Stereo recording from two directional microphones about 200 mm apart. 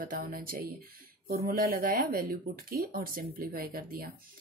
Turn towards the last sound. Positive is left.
turn(degrees=-45)  # may be behind; listen again after turning